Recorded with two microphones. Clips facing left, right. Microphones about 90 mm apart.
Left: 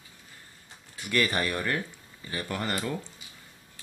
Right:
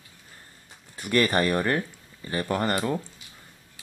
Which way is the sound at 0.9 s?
40° right (ahead or behind).